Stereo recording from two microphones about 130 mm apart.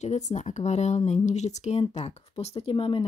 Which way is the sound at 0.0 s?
60° left (ahead or behind).